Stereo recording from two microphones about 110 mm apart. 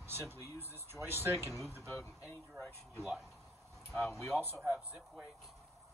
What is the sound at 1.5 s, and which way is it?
Speech, centre (ahead or behind).